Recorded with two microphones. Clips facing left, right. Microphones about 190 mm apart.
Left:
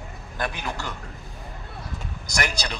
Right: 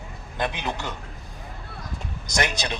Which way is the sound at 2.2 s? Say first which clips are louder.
Right 2 dB; 20° right (ahead or behind).